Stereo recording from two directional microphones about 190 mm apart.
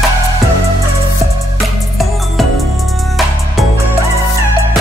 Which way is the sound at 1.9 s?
Centre (ahead or behind).